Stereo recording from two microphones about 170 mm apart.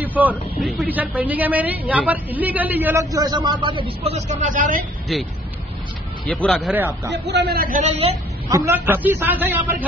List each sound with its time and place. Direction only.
0.0 s speech: 10° right (ahead or behind); by 4.8 s 50° right (ahead or behind)
6.2 s speech: 10° left (ahead or behind)
7.1 s a man's voice: 90° right; by 7.8 s 60° right (ahead or behind)
7.8 s a woman's voice: 35° right (ahead or behind)
8.5 s speech: 15° right (ahead or behind)